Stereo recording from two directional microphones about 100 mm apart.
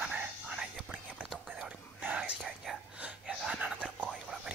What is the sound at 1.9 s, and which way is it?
Whispering, 15° right (ahead or behind).